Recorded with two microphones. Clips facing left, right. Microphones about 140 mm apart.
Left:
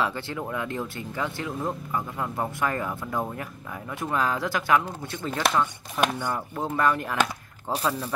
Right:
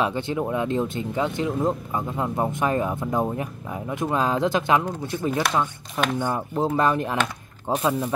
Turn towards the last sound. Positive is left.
turn(degrees=-15)  # may be behind; listen again after turning